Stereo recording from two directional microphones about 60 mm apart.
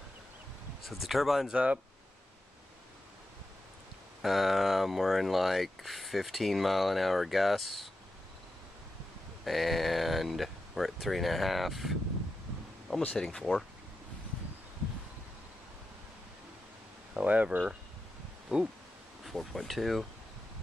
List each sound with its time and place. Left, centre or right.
0.8 s speech: centre
1.5 s speech: right
4.2 s speech: centre
9.4 s speech: centre
13.1 s speech: centre
17.1 s speech: right
18.5 s a sound: centre
19.2 s speech: centre